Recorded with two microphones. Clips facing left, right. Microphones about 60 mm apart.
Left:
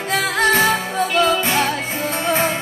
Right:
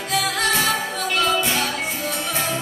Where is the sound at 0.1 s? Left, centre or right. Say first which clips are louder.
Left 5 dB; left.